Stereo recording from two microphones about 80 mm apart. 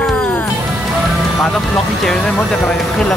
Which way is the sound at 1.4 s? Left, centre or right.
Centre.